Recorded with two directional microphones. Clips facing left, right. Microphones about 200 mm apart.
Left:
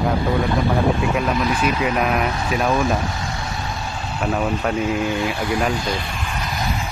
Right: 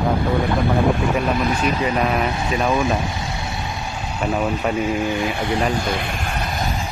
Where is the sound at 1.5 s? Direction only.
40° right (ahead or behind).